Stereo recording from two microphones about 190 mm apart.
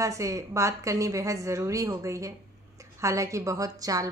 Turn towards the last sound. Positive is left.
turn(degrees=-20)  # may be behind; listen again after turning